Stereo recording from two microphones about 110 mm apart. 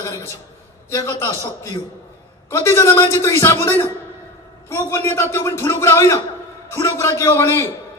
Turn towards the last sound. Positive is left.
turn(degrees=25)  # may be behind; listen again after turning